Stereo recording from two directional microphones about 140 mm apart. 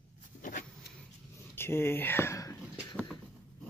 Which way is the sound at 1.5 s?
15° left (ahead or behind).